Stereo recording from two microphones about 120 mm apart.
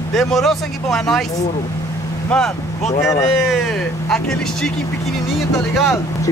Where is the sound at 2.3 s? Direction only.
5° left (ahead or behind).